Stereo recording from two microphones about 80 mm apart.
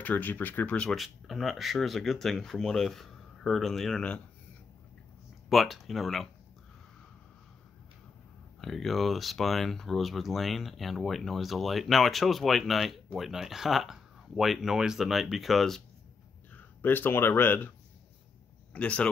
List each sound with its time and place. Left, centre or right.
0.0 s speech: left
0.7 s speech: centre
5.5 s speech: centre
8.5 s speech: centre
16.5 s speech: left